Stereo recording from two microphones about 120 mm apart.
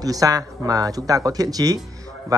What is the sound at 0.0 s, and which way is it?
Speech, 30° right (ahead or behind).